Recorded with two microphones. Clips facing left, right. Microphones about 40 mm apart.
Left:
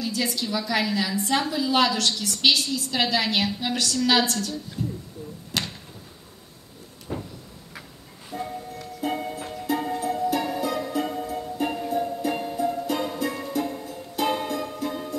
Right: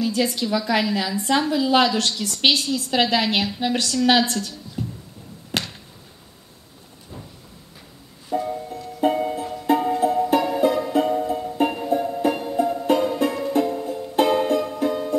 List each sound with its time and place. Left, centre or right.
0.0 s a woman's voice: right
4.8 s music: right
5.5 s a sound: right
7.1 s vehicle: left
8.3 s music: right